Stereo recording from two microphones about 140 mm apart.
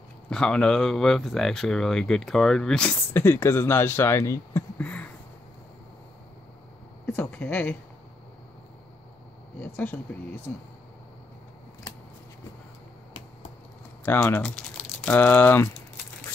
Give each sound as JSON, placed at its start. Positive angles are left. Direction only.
{"t": 0.3, "sound": "speech", "side_deg": 5}
{"t": 3.1, "sound": "speech", "side_deg": 15}
{"t": 7.1, "sound": "a sound", "side_deg": 10}
{"t": 9.6, "sound": "speech", "side_deg": 10}
{"t": 14.0, "sound": "speech", "side_deg": 15}
{"t": 14.4, "sound": "speech", "side_deg": 5}